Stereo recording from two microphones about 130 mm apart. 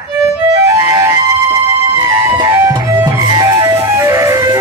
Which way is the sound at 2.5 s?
25° right (ahead or behind).